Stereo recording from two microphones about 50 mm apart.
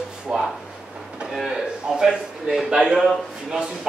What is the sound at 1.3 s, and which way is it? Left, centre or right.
A man's voice, centre.